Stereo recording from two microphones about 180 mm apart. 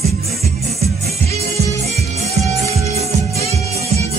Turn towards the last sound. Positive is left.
turn(degrees=-35)  # may be behind; listen again after turning